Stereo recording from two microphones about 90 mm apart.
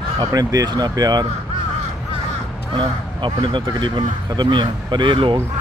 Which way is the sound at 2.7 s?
65° right (ahead or behind).